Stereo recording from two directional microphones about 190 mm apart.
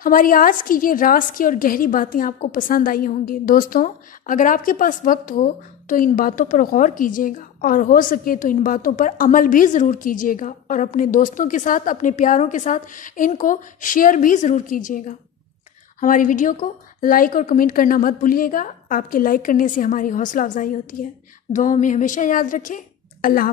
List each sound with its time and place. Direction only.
0.0 s a woman's voice: 45° left (ahead or behind)